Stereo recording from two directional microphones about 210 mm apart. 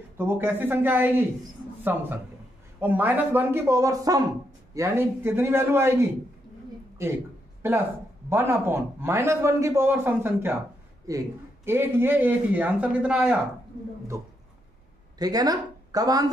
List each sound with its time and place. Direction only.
0.2 s a man's voice: 10° right (ahead or behind)
2.8 s a man's voice: 10° right (ahead or behind)
8.3 s a man's voice: 10° right (ahead or behind)
15.1 s a woman's voice: 20° right (ahead or behind)